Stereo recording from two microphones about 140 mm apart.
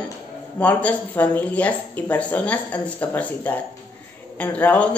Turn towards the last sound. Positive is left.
turn(degrees=10)  # may be behind; listen again after turning